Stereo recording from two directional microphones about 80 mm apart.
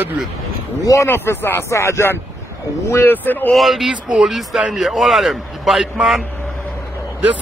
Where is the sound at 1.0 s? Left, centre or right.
Left.